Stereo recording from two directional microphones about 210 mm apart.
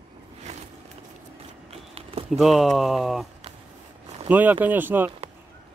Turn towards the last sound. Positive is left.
turn(degrees=-10)  # may be behind; listen again after turning